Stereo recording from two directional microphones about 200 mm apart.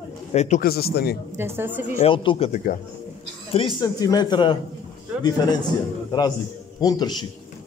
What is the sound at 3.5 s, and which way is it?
A man's voice, 25° left (ahead or behind).